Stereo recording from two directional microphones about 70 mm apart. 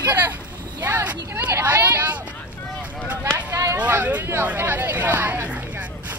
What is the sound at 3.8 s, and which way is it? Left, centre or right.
Hubbub, right.